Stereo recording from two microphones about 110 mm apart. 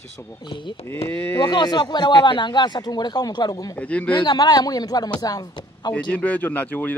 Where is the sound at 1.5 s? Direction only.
40° left (ahead or behind).